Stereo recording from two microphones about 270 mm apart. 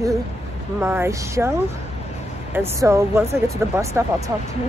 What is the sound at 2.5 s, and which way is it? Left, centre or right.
Speech, centre.